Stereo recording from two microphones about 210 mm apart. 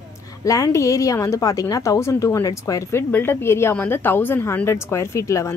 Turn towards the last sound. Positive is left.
turn(degrees=15)  # may be behind; listen again after turning